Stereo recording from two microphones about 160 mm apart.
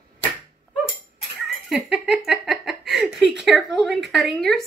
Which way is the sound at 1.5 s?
Centre (ahead or behind).